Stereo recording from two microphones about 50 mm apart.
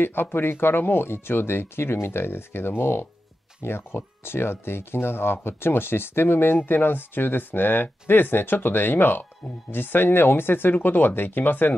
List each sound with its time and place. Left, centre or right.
0.0 s speech: left